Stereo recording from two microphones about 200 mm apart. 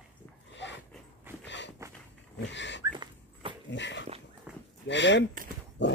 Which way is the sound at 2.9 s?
25° right (ahead or behind).